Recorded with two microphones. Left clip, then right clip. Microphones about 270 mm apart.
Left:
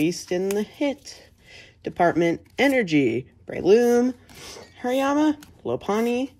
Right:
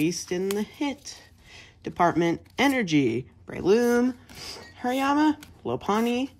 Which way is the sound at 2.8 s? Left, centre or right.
Right.